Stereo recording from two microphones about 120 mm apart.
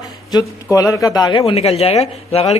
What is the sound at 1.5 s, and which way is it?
Speech, 60° left (ahead or behind).